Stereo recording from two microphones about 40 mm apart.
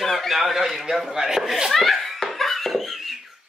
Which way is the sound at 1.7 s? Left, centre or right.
Centre.